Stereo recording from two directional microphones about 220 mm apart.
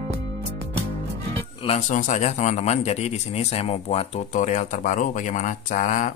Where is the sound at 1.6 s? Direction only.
30° left (ahead or behind).